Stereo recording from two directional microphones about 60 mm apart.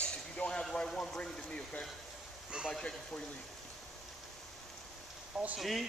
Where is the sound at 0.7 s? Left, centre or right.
Centre.